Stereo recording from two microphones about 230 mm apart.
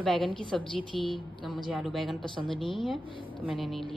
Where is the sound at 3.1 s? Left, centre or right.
Left.